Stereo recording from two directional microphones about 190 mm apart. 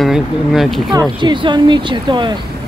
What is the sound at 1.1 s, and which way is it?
Speech, 25° right (ahead or behind).